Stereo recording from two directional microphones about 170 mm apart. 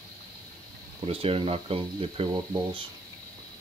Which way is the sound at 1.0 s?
35° right (ahead or behind).